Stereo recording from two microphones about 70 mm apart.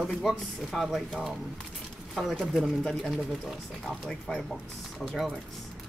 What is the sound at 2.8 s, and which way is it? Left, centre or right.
Speech, centre.